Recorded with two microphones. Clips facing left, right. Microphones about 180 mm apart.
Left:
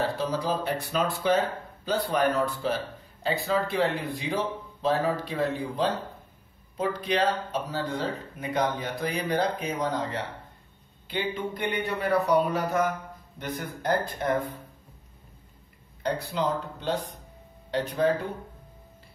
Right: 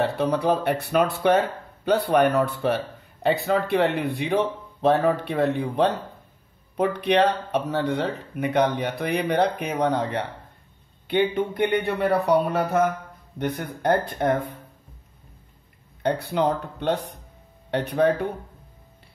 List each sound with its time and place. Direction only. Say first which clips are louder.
0.0 s speech: right 6 dB; 65° right (ahead or behind)
16.0 s speech: right 5 dB; 60° right (ahead or behind)